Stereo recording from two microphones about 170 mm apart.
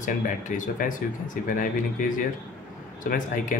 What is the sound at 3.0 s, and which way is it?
Speech, 50° left (ahead or behind).